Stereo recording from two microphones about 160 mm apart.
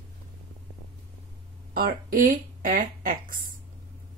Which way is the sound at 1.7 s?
60° right (ahead or behind).